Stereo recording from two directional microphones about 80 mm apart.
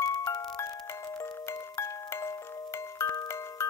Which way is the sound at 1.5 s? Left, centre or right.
Left.